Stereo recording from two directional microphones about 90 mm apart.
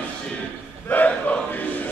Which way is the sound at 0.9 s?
20° left (ahead or behind).